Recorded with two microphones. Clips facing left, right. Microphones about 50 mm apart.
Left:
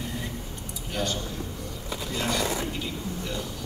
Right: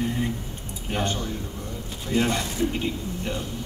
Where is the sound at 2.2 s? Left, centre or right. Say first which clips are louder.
Right 5 dB; right.